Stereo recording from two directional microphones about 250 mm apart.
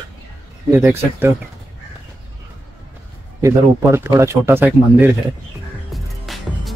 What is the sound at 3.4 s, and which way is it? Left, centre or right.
Speech, centre.